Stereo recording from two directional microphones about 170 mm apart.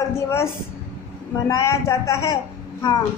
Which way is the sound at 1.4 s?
20° left (ahead or behind).